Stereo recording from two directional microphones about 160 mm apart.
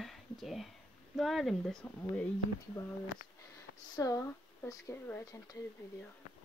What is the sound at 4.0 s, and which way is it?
Speech, 20° left (ahead or behind).